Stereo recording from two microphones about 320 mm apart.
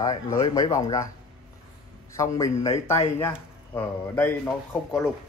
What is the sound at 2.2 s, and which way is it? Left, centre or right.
A man's voice, centre.